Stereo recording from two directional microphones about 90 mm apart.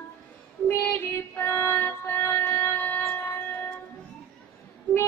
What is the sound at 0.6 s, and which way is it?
Child singing, 25° left (ahead or behind).